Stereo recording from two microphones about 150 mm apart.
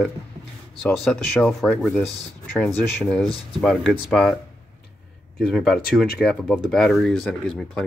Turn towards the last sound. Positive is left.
turn(degrees=0)  # may be behind; listen again after turning